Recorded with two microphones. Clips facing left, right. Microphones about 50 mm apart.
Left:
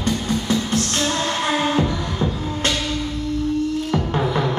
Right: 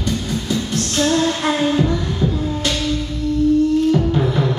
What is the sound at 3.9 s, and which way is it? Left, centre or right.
Music, left.